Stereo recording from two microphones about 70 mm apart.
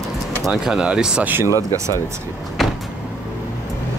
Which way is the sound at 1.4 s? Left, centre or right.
Right.